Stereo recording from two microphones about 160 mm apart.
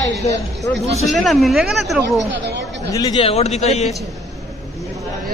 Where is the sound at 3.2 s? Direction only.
40° left (ahead or behind).